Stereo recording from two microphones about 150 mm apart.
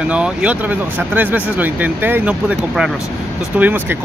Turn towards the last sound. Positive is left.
turn(degrees=-10)  # may be behind; listen again after turning